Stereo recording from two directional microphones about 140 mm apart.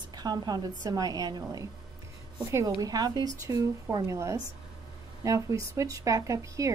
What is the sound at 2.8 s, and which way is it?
Speech, 30° right (ahead or behind).